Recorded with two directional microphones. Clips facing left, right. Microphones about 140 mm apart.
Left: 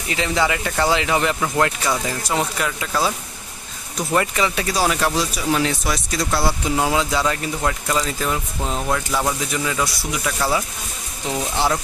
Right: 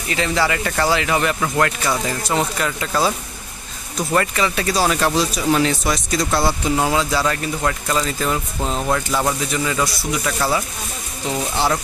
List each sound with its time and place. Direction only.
0.1 s speech: 15° left (ahead or behind)
1.9 s speech: 5° left (ahead or behind)
4.1 s speech: 15° left (ahead or behind)
8.0 s speech: centre (ahead or behind)